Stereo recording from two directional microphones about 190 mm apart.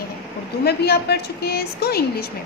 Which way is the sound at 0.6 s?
55° left (ahead or behind).